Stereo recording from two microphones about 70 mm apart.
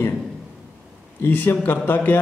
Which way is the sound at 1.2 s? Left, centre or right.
Left.